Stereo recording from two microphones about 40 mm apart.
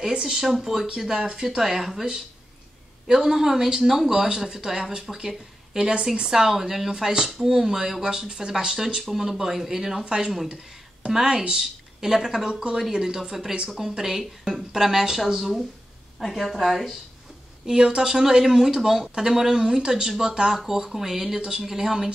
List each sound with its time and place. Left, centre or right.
0.1 s speech: centre
3.1 s speech: centre
3.8 s speech: centre; by 6.2 s right
6.2 s a woman's voice: centre
17.6 s speech: centre